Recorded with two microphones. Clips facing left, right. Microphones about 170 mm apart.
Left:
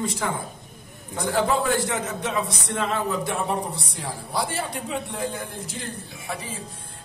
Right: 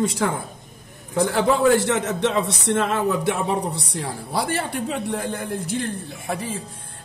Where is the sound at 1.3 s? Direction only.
70° right (ahead or behind).